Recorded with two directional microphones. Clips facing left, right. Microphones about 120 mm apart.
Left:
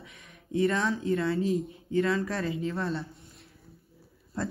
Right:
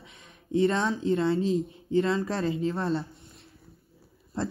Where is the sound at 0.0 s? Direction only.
30° right (ahead or behind).